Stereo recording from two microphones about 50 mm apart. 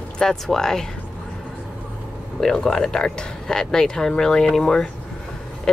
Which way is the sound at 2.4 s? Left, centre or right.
Centre.